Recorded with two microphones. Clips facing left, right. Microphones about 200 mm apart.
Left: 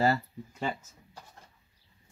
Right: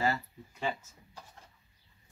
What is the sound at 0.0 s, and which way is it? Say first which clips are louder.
Speech: left 5 dB; 40° left (ahead or behind).